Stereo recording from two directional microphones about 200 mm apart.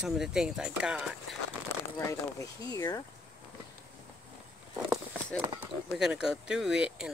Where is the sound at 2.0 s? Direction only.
15° left (ahead or behind).